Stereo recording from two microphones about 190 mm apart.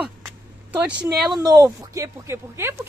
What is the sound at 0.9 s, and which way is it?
Speech, 65° right (ahead or behind).